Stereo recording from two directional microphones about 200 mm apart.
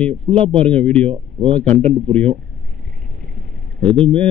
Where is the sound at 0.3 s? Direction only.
30° right (ahead or behind).